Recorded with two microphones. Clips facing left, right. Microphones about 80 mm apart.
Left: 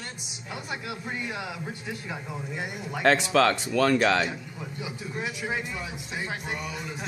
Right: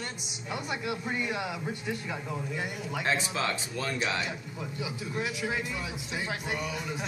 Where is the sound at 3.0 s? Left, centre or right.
Left.